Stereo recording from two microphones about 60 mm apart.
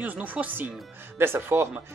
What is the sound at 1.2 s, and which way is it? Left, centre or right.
Speech, right.